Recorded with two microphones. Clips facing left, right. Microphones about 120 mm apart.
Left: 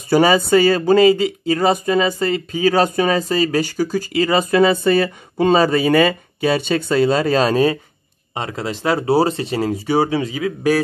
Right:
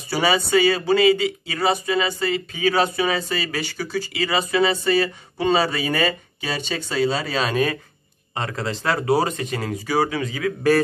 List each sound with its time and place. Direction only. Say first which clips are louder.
0.1 s speech: left 6 dB; 45° left (ahead or behind)
8.4 s speech: left 2 dB; 20° left (ahead or behind)